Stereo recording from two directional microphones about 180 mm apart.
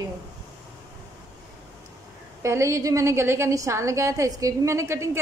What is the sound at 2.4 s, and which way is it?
A woman's voice, 15° right (ahead or behind).